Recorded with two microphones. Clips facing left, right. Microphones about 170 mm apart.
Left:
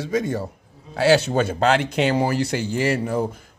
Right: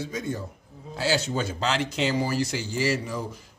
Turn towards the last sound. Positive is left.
turn(degrees=55)  # may be behind; listen again after turning